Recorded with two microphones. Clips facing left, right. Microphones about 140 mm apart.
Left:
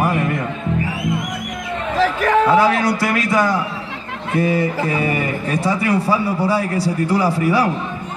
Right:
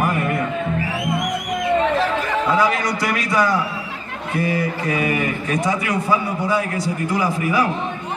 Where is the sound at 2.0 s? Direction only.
85° left.